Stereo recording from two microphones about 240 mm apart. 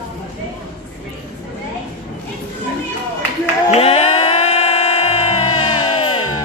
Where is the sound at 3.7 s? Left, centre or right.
Left.